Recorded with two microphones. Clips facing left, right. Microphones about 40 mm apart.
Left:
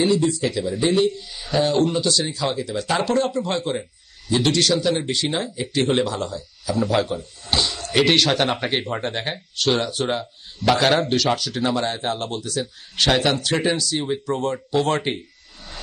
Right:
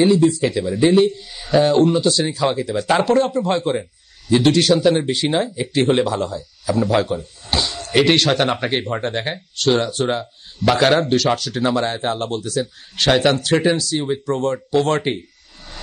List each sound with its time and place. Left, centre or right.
0.0 s speech: centre
0.6 s a man's voice: centre